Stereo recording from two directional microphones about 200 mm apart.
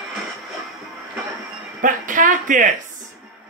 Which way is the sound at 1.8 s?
40° right (ahead or behind).